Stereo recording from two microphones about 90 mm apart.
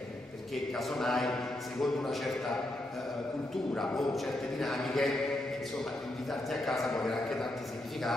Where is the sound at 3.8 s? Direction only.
5° left (ahead or behind).